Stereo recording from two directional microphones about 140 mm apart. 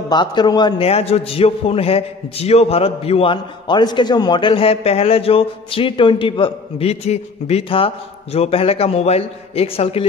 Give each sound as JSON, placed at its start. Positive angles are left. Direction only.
{"t": 0.1, "sound": "a man's voice", "side_deg": 30}
{"t": 0.8, "sound": "a man's voice", "side_deg": 45}